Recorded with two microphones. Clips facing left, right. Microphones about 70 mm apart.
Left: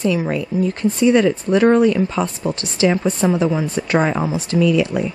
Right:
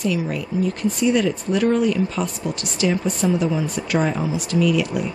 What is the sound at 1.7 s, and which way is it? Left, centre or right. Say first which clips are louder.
A woman's voice: left 5 dB; left.